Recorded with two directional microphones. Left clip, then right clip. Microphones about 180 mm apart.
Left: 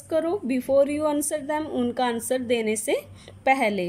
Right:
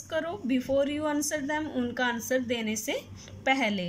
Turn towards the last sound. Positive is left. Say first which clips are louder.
# left 5 dB
turn(degrees=15)  # may be behind; listen again after turning